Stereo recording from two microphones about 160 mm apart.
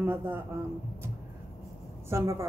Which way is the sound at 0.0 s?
15° right (ahead or behind).